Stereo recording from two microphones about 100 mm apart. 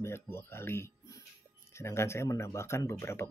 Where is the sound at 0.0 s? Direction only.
25° left (ahead or behind).